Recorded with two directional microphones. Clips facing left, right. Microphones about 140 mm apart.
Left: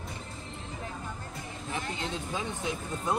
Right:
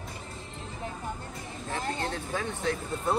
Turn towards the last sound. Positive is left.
turn(degrees=15)  # may be behind; listen again after turning